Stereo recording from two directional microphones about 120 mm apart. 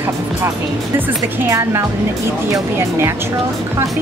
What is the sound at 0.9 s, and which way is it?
Speech, 15° right (ahead or behind).